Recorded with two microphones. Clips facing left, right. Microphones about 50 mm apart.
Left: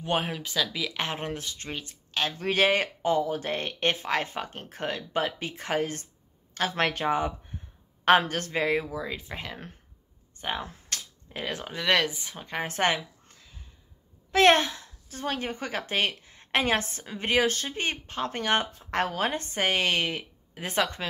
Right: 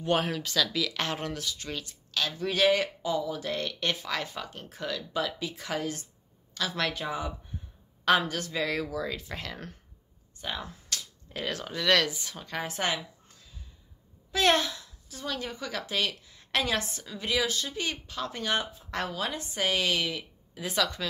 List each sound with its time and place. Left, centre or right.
0.0 s speech: left
2.3 s a woman's voice: left
8.6 s speech: left
10.3 s a sound: left
11.3 s speech: left
12.6 s speech: left
14.3 s a woman's voice: left